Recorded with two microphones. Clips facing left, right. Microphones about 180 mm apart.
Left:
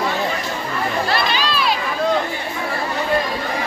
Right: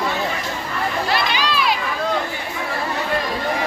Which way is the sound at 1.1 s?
15° right (ahead or behind).